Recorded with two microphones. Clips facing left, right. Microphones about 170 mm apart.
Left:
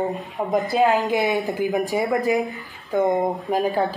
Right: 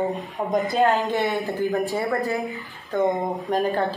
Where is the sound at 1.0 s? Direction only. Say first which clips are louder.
Left 2 dB; 15° left (ahead or behind).